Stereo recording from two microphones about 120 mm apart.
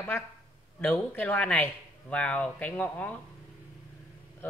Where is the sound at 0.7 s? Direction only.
15° left (ahead or behind).